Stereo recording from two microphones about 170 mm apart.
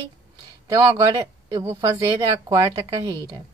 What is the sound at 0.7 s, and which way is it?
Speech, 20° right (ahead or behind).